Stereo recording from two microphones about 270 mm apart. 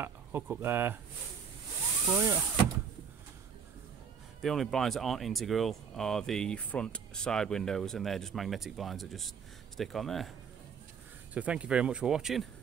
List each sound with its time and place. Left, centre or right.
0.0 s speech: centre
2.1 s speech: centre
4.4 s speech: centre
11.3 s speech: centre